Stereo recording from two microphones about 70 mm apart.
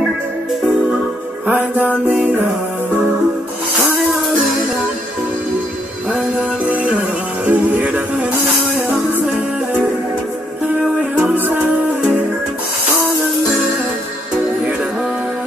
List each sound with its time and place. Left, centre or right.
1.5 s music: right
6.6 s music: centre
11.0 s music: centre
11.3 s music: right